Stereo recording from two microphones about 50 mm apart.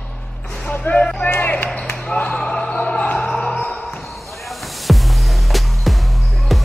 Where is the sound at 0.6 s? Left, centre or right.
Left.